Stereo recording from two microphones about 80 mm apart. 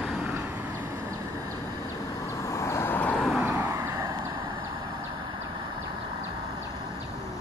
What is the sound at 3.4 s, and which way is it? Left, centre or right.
Vehicle, right.